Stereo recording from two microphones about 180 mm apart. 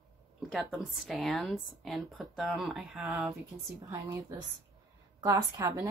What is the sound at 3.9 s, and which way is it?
A woman's voice, 20° right (ahead or behind).